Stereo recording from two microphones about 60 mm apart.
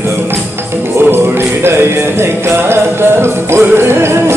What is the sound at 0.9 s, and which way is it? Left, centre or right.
Music, right.